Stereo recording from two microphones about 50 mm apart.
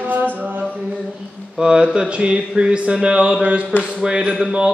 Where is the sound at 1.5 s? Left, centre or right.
Centre.